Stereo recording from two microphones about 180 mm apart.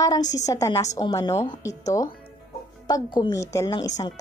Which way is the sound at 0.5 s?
15° left (ahead or behind).